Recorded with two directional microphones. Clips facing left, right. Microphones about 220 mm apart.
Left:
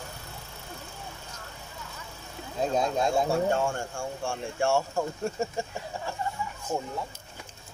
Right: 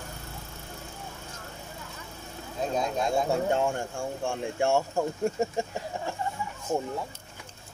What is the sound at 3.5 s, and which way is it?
Speech, 20° right (ahead or behind).